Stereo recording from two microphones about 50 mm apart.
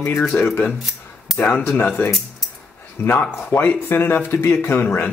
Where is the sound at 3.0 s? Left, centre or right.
Left.